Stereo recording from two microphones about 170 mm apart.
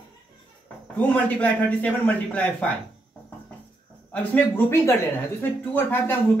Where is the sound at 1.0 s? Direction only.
10° left (ahead or behind).